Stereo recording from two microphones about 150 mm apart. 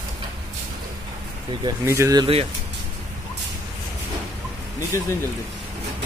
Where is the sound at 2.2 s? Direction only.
40° right (ahead or behind).